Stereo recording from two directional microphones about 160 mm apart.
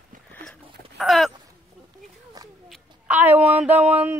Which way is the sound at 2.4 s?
25° right (ahead or behind).